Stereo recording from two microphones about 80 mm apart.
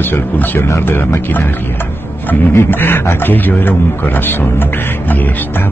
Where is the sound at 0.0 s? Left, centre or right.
Left.